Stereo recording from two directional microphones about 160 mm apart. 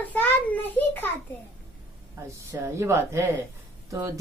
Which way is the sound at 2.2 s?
15° right (ahead or behind).